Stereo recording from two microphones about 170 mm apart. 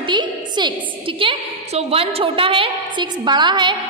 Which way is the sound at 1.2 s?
35° right (ahead or behind).